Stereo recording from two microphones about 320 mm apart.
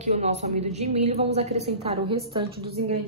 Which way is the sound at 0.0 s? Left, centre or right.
Right.